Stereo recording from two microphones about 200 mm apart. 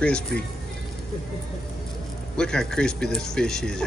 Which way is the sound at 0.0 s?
5° left (ahead or behind).